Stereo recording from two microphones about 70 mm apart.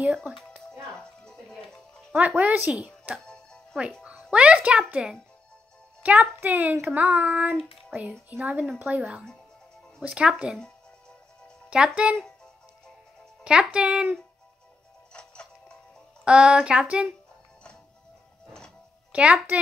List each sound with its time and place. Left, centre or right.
0.0 s a child's voice: right
0.9 s music: centre
2.1 s a child's voice: right
4.0 s a child's voice: centre
10.0 s a sound: centre
11.7 s a sound: centre
13.4 s speech: centre
16.3 s a sound: centre
19.1 s a child's voice: centre